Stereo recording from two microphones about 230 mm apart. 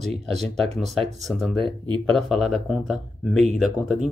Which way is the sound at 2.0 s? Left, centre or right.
Centre.